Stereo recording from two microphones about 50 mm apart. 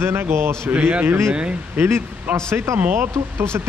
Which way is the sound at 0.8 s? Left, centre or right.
Right.